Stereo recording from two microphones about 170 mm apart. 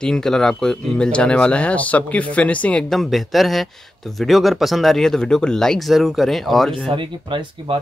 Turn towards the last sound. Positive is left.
turn(degrees=-30)  # may be behind; listen again after turning